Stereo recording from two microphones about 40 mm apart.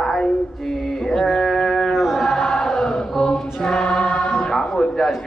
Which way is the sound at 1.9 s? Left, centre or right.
Centre.